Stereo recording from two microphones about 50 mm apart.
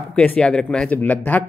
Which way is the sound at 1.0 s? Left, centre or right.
Left.